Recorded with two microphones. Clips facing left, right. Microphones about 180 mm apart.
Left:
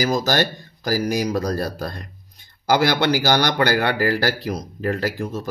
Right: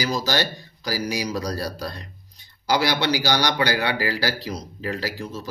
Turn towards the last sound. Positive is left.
turn(degrees=55)  # may be behind; listen again after turning